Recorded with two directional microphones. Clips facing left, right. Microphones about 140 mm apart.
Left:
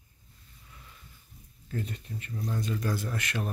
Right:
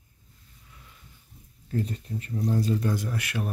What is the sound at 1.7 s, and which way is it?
Speech, 35° right (ahead or behind).